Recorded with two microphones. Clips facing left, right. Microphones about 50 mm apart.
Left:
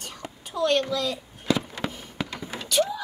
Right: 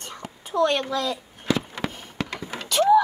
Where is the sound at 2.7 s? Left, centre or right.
Right.